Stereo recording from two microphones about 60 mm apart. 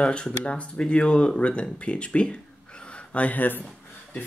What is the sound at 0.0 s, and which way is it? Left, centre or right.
Speech, centre.